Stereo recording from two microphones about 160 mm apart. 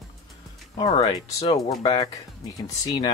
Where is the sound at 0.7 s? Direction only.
35° left (ahead or behind).